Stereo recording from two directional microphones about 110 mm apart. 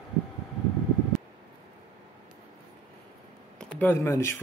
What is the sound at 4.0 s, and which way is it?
Speech, 25° left (ahead or behind).